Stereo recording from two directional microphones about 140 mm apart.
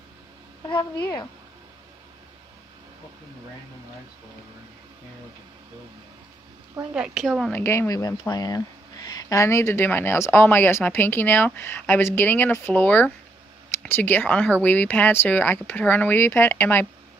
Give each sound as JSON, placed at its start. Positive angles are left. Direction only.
{"t": 0.7, "sound": "speech", "side_deg": 30}
{"t": 6.9, "sound": "a woman's voice", "side_deg": -5}
{"t": 7.5, "sound": "speech", "side_deg": 20}